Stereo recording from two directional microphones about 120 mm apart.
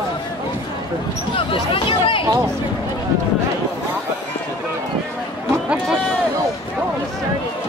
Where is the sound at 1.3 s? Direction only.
50° left (ahead or behind).